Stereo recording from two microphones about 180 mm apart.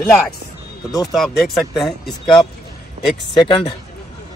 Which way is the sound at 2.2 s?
25° left (ahead or behind).